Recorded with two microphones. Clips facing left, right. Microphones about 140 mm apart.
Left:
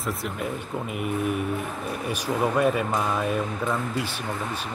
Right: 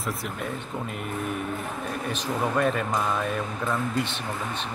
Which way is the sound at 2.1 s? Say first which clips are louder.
Left 3 dB; 10° left (ahead or behind).